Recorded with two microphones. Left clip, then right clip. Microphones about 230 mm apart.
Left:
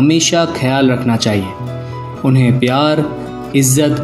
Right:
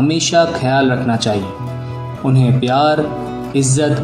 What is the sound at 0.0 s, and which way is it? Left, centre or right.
A man's voice, left.